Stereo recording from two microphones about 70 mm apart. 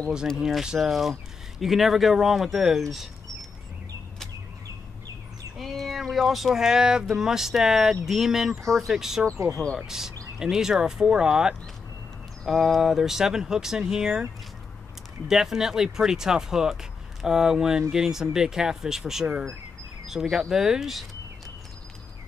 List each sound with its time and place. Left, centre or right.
0.4 s speech: centre
5.6 s speech: centre
9.3 s speech: right
9.8 s speech: centre
15.2 s speech: centre